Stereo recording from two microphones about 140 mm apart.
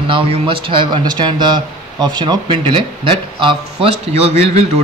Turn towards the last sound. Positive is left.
turn(degrees=-50)  # may be behind; listen again after turning